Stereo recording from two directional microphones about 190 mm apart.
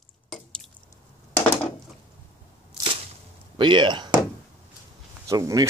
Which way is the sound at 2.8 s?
15° right (ahead or behind).